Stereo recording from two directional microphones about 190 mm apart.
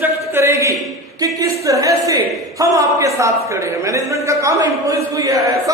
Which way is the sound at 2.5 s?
15° right (ahead or behind).